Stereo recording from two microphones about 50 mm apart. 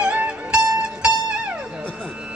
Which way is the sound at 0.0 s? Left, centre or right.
Right.